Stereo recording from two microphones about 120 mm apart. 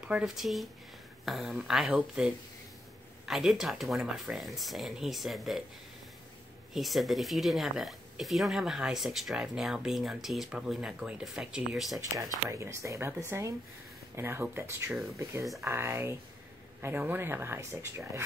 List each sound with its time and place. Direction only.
0.0 s speech: 5° right (ahead or behind)
6.7 s speech: centre (ahead or behind)
12.0 s speech: 25° right (ahead or behind)